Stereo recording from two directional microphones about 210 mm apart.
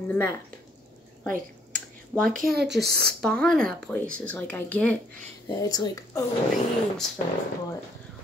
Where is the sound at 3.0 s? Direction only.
5° left (ahead or behind).